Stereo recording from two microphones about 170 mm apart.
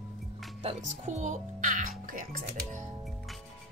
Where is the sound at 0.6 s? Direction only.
45° right (ahead or behind).